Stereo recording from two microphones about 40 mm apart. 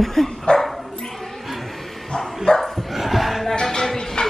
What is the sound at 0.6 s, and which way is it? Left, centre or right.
Bow-wow, centre.